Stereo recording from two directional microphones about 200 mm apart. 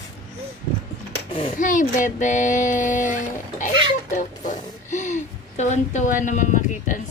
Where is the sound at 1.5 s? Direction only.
40° left (ahead or behind).